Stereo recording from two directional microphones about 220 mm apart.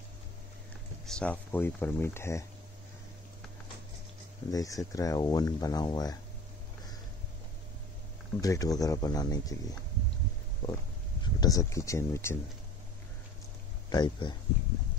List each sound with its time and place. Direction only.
1.0 s speech: 5° left (ahead or behind)
4.5 s speech: 15° left (ahead or behind)
8.4 s speech: 15° left (ahead or behind)
13.8 s speech: 20° left (ahead or behind)